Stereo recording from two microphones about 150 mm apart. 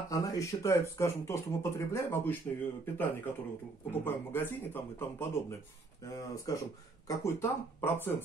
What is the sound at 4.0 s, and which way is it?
Speech, 15° left (ahead or behind).